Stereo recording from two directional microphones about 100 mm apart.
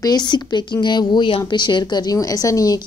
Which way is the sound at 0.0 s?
45° left (ahead or behind).